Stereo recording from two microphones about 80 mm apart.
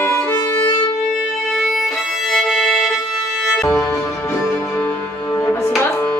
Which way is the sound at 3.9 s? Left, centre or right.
Left.